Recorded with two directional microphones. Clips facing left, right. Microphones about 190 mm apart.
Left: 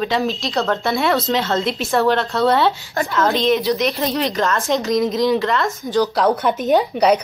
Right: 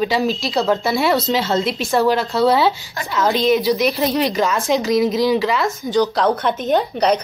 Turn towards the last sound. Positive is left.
turn(degrees=5)  # may be behind; listen again after turning